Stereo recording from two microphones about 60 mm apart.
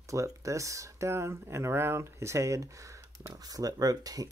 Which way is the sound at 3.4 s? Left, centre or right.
Right.